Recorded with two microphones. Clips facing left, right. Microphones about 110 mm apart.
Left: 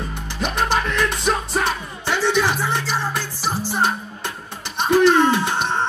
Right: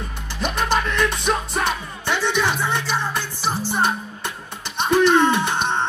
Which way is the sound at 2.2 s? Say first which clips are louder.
Left 2 dB; 20° right (ahead or behind).